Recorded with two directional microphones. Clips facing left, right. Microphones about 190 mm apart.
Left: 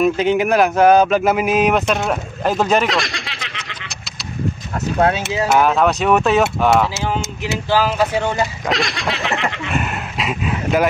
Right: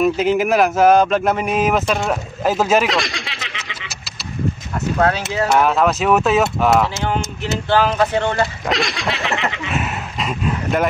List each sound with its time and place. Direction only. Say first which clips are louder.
0.0 s speech: even; centre (ahead or behind)
5.0 s speech: left 1 dB; 20° left (ahead or behind)
5.5 s speech: left 1 dB; centre (ahead or behind)
8.6 s a sound: even; centre (ahead or behind)